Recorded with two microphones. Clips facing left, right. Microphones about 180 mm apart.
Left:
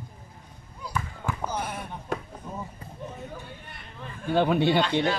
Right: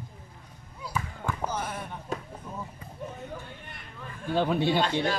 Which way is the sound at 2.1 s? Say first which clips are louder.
Left 3 dB; 65° left (ahead or behind).